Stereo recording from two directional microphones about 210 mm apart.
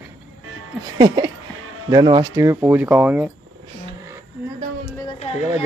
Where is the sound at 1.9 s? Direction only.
20° right (ahead or behind).